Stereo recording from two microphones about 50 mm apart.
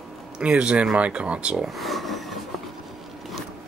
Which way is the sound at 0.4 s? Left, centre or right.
Right.